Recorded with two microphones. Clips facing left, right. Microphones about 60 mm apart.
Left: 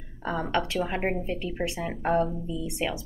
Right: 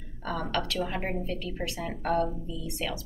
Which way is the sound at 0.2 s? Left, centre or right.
Left.